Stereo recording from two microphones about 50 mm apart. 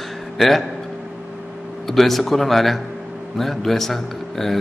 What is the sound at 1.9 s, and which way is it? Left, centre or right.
A man's voice, centre.